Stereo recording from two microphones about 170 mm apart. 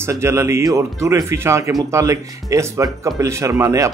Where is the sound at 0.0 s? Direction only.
15° right (ahead or behind).